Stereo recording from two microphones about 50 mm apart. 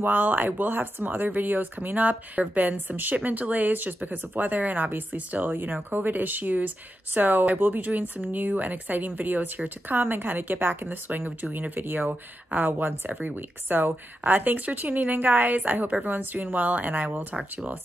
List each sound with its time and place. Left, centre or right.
0.0 s a woman's voice: right
11.1 s speech: right